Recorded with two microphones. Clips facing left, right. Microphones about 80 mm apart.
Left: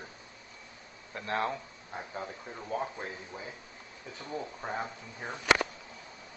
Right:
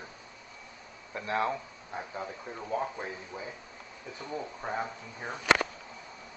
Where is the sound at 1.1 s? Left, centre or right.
Centre.